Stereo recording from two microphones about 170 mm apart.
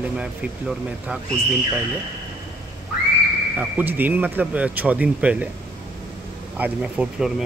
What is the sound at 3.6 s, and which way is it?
Speech, 10° right (ahead or behind).